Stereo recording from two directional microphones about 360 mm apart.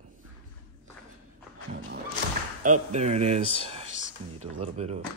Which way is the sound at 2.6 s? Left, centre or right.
Centre.